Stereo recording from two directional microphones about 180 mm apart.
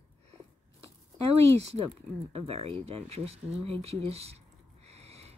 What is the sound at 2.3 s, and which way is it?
Speech, 30° right (ahead or behind).